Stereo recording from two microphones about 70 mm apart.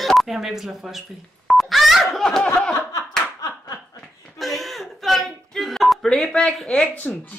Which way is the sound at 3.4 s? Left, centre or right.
Left.